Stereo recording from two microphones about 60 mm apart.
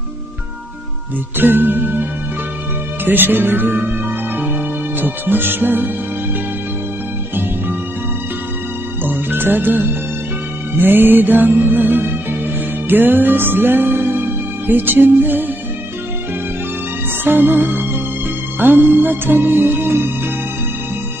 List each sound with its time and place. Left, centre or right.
1.4 s music: right
3.1 s music: right
5.0 s music: right
9.0 s speech: right
10.8 s music: right
17.2 s music: right